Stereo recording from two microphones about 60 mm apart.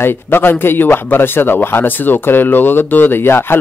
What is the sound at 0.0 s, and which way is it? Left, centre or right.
Speech, left.